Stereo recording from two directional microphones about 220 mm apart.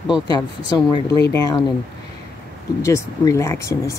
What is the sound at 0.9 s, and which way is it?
Speech, 15° left (ahead or behind).